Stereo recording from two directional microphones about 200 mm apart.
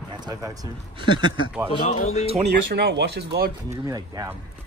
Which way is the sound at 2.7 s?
55° right (ahead or behind).